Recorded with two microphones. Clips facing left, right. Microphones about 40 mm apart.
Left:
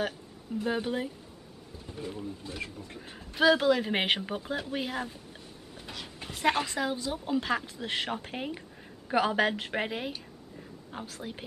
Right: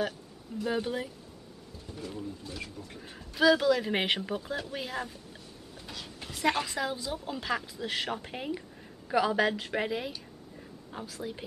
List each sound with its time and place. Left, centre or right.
0.7 s speech: centre
2.0 s speech: left
2.9 s speech: centre
3.3 s speech: left
5.8 s a sound: left
6.2 s speech: centre
9.1 s speech: left
10.9 s speech: centre